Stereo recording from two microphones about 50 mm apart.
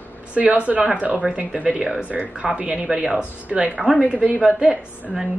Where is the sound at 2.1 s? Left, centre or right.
Right.